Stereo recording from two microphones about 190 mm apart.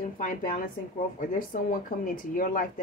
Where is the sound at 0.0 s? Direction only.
45° left (ahead or behind).